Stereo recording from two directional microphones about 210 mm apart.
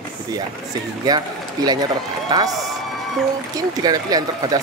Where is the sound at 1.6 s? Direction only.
15° right (ahead or behind).